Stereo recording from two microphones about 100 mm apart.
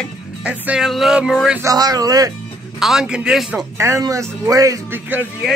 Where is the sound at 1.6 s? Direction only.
40° right (ahead or behind).